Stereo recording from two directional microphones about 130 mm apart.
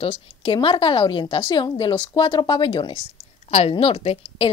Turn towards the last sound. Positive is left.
turn(degrees=50)  # may be behind; listen again after turning